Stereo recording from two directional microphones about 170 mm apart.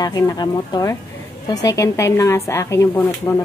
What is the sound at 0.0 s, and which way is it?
A woman's voice, 20° left (ahead or behind).